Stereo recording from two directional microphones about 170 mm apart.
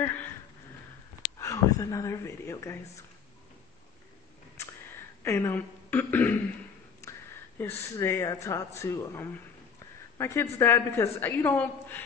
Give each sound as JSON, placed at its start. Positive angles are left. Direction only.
{"t": 0.0, "sound": "a sound", "side_deg": 10}
{"t": 1.4, "sound": "speech", "side_deg": 20}
{"t": 5.2, "sound": "a woman's voice", "side_deg": 15}